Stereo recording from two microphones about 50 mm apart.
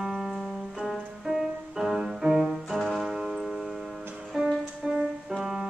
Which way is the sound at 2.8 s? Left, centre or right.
Centre.